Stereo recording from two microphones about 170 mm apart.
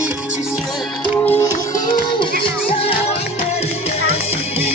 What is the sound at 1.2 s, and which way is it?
Music, 15° left (ahead or behind).